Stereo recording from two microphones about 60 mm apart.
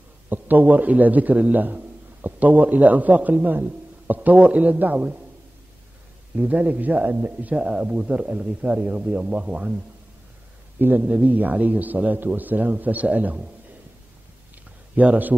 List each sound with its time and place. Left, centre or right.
0.3 s a man's voice: right
6.3 s a man's voice: right
11.0 s a man's voice: right
15.0 s a man's voice: right